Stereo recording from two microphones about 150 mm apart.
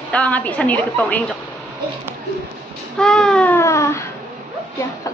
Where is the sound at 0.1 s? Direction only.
10° left (ahead or behind).